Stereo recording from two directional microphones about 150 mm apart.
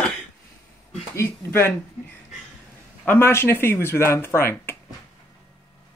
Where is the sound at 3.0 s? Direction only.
15° left (ahead or behind).